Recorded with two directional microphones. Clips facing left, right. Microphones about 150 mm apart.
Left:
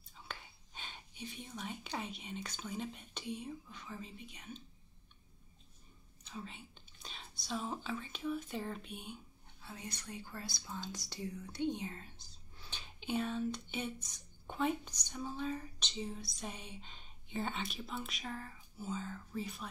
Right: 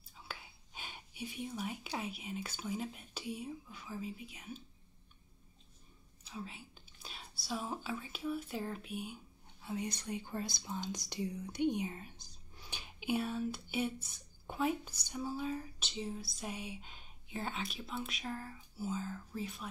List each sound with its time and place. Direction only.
0.3 s speech: 5° right (ahead or behind)
6.2 s speech: 5° right (ahead or behind)
9.6 s speech: 15° right (ahead or behind)